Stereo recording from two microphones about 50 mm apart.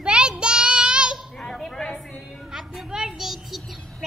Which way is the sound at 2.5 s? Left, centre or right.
Centre.